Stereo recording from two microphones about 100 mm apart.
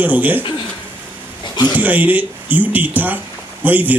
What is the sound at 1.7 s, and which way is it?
Speech, 15° right (ahead or behind).